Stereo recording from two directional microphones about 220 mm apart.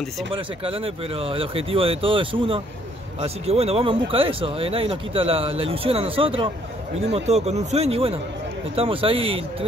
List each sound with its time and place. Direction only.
0.3 s speech: 25° right (ahead or behind)